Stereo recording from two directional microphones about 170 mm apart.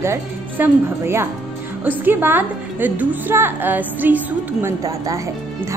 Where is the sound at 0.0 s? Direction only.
15° right (ahead or behind).